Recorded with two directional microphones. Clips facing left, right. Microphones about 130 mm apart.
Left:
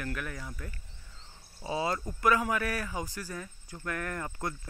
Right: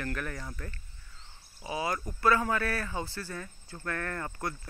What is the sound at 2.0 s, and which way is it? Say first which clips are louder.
Speech: right 2 dB; 15° left (ahead or behind).